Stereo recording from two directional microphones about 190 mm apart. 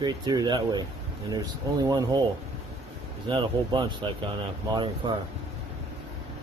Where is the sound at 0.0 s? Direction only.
20° right (ahead or behind).